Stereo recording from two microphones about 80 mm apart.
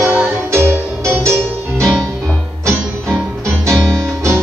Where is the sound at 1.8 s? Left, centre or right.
Centre.